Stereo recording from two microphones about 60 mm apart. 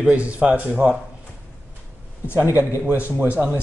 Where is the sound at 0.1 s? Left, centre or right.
Right.